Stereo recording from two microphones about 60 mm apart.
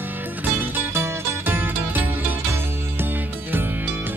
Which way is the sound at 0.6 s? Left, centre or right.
Right.